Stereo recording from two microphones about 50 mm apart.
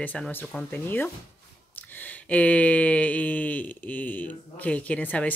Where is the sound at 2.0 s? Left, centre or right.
Left.